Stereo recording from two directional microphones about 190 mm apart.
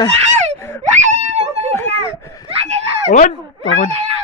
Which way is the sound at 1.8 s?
30° right (ahead or behind).